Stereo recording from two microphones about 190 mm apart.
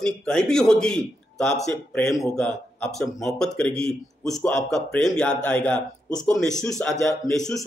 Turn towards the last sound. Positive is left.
turn(degrees=5)  # may be behind; listen again after turning